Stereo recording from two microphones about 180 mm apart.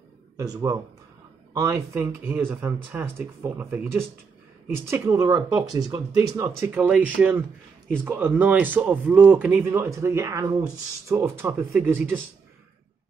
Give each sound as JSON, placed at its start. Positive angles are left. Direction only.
{"t": 0.4, "sound": "speech", "side_deg": -20}